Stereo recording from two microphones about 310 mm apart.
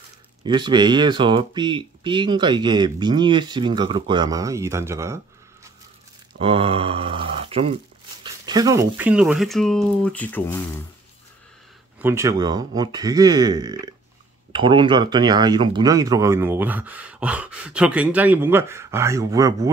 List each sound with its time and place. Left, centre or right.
0.4 s speech: centre
12.0 s speech: centre